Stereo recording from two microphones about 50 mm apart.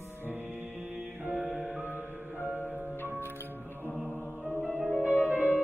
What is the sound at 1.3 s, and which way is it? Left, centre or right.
Music, centre.